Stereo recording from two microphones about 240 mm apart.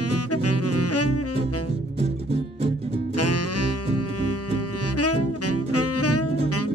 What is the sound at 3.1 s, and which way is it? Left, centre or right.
Music, left.